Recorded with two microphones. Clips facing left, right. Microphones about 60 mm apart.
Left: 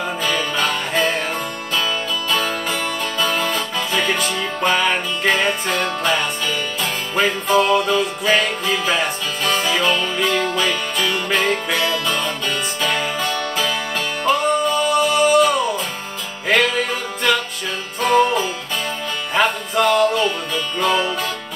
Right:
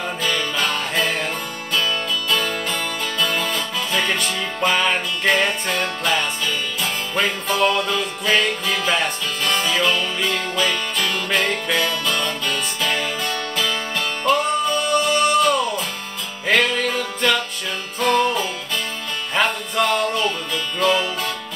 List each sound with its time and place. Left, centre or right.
0.2 s music: centre